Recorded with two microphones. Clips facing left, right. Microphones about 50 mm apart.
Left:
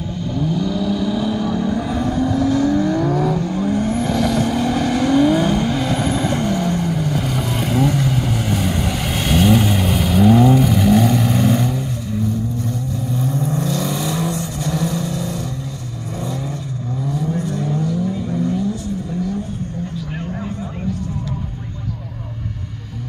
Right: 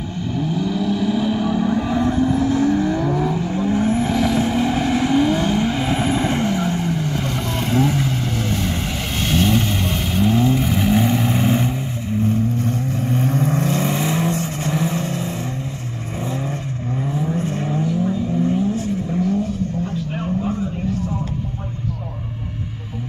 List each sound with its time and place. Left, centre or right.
0.4 s vehicle: centre
8.2 s vehicle: centre; by 12.2 s right
12.2 s vehicle: right
13.7 s vehicle: right
17.0 s vehicle: right
17.4 s vehicle: right